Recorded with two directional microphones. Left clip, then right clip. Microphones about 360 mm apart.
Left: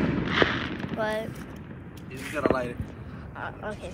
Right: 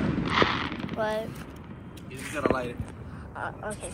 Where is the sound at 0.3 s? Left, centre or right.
Centre.